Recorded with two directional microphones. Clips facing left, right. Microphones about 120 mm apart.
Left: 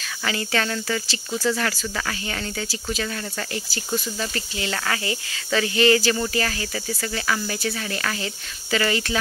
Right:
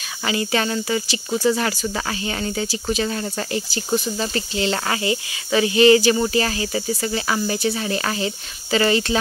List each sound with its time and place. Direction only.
0.2 s speech: 20° right (ahead or behind)